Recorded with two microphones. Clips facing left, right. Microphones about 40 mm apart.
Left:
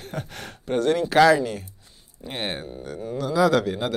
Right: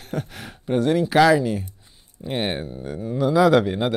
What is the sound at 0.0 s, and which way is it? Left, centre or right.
Speech, centre.